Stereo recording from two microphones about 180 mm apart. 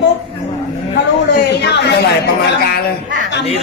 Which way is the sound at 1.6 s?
75° left (ahead or behind).